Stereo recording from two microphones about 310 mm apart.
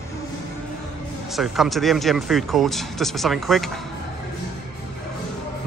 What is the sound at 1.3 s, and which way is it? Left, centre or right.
Speech, centre.